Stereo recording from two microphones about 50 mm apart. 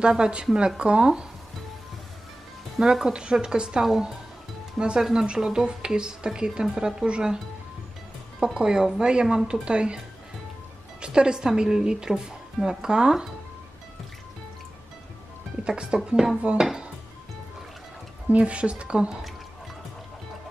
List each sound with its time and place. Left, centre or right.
0.0 s speech: centre
2.8 s speech: centre
3.8 s speech: centre
4.7 s speech: centre
8.5 s speech: centre
15.6 s speech: centre
18.3 s speech: right